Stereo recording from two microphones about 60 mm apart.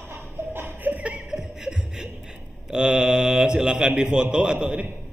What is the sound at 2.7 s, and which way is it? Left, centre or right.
Speech, centre.